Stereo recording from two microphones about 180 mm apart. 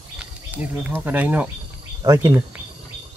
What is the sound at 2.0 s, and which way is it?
Speech, 20° right (ahead or behind).